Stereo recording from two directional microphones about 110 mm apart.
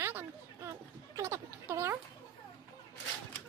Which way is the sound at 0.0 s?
20° right (ahead or behind).